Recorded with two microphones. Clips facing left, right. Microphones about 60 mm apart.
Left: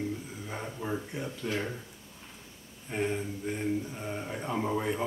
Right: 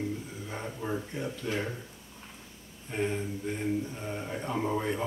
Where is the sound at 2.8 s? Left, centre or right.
Centre.